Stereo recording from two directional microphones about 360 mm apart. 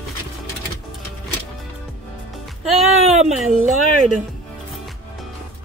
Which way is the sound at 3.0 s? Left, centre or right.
Centre.